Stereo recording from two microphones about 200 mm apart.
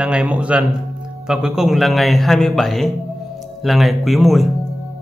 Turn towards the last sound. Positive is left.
turn(degrees=0)  # may be behind; listen again after turning